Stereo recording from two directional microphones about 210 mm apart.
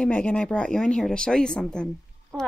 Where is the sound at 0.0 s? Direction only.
5° left (ahead or behind).